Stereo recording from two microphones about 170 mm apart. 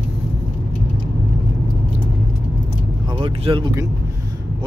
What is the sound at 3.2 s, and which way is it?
Speech, 30° right (ahead or behind).